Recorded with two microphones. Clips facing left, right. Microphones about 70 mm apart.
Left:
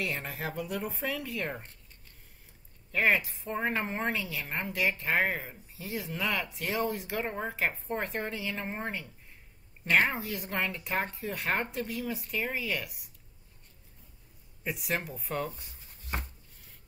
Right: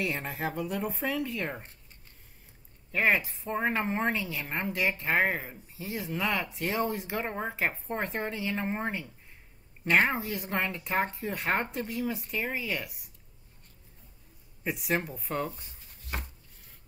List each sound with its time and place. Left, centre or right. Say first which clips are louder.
0.0 s speech: right 3 dB; centre
2.9 s speech: right 1 dB; centre
15.0 s speech: right 1 dB; centre